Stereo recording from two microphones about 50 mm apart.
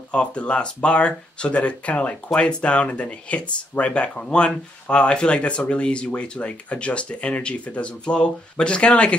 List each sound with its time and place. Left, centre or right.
0.1 s speech: left